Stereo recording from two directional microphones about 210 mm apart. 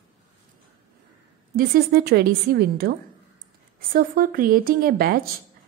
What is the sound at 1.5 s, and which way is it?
A woman's voice, 45° right (ahead or behind).